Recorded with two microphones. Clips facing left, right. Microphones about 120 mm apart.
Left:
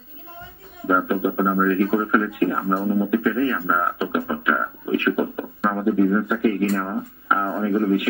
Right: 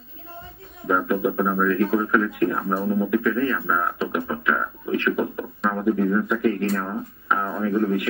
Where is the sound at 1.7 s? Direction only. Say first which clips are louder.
Left 1 dB; 5° left (ahead or behind).